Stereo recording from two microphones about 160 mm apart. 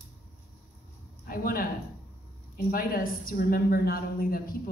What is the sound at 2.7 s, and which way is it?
A woman's voice, 65° left (ahead or behind).